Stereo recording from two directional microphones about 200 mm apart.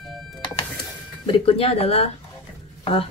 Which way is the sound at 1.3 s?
30° left (ahead or behind).